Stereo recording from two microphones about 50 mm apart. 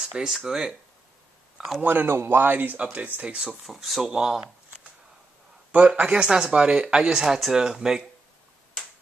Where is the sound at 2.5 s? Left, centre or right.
Right.